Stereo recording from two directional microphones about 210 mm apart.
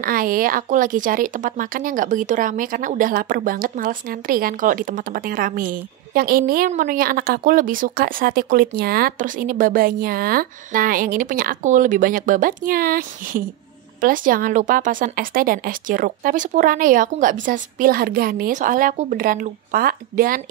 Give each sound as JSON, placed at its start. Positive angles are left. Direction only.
{"t": 0.0, "sound": "speech", "side_deg": -40}